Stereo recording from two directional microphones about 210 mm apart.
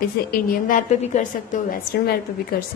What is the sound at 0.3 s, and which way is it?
A woman's voice, 40° left (ahead or behind).